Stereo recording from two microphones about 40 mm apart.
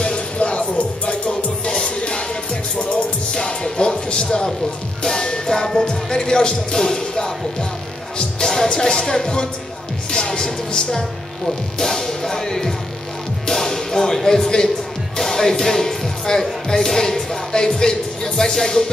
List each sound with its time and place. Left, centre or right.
0.0 s music: left
13.5 s speech: centre
15.1 s music: centre
16.6 s speech: centre